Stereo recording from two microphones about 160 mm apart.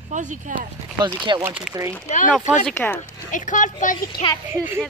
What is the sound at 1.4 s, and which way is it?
Speech, 10° right (ahead or behind).